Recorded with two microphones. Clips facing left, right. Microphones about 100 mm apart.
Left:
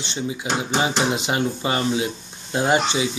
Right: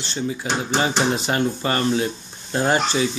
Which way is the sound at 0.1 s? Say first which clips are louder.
Right 1 dB; 15° left (ahead or behind).